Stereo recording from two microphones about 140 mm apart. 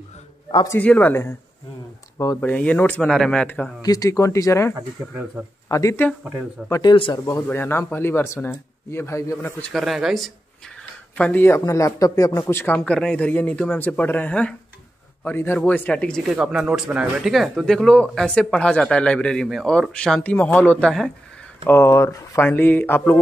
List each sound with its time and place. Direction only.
0.7 s speech: 10° left (ahead or behind)
3.8 s speech: 25° left (ahead or behind)
7.4 s speech: 15° left (ahead or behind)
9.6 s speech: centre (ahead or behind)
11.1 s speech: 10° left (ahead or behind)
16.3 s speech: 5° right (ahead or behind)
21.6 s speech: 20° left (ahead or behind)